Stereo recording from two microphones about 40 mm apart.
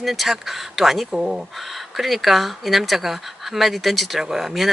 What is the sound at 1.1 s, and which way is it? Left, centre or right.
Speech, centre.